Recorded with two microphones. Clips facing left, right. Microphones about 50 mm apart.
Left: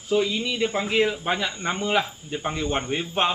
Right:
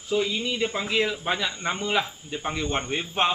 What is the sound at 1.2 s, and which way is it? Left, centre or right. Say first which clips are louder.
A man's voice: left 1 dB; centre.